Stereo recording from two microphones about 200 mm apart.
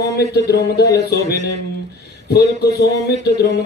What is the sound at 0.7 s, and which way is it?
Speech, 55° left (ahead or behind).